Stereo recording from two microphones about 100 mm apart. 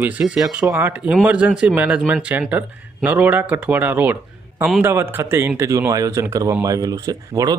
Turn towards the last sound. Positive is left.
turn(degrees=-40)  # may be behind; listen again after turning